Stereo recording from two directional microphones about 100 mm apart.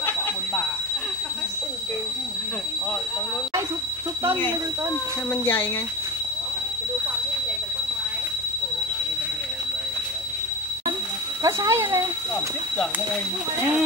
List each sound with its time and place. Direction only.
5.3 s speech: 20° left (ahead or behind)
11.4 s speech: 30° right (ahead or behind)